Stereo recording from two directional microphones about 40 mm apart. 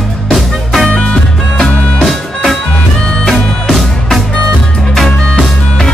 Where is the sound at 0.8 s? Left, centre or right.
Left.